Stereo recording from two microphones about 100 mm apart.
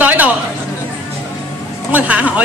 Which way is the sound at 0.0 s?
15° right (ahead or behind).